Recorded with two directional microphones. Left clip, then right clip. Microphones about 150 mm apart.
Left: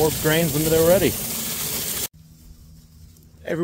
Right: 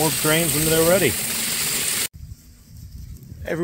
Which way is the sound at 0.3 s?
30° left (ahead or behind).